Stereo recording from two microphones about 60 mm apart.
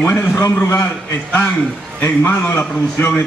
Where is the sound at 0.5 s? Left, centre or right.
Left.